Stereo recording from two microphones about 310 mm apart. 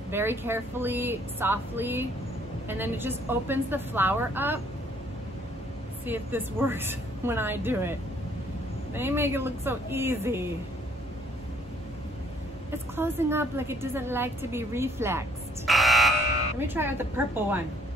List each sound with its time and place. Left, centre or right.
0.1 s a woman's voice: centre
6.0 s a woman's voice: centre
8.9 s a woman's voice: centre
12.9 s a woman's voice: centre